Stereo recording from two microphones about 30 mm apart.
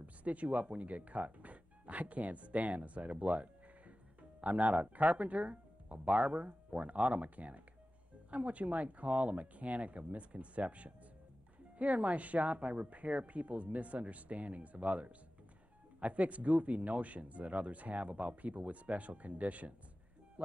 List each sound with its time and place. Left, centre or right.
0.0 s speech: right